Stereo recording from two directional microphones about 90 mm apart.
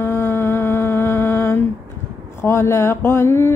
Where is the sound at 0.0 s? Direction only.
30° left (ahead or behind).